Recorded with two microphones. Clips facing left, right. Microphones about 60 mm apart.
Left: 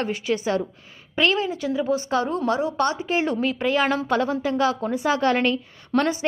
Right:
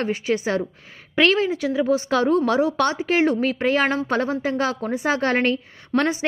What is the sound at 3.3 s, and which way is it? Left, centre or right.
Speech, right.